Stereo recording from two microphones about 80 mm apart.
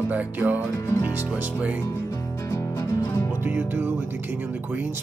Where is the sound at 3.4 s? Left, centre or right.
Right.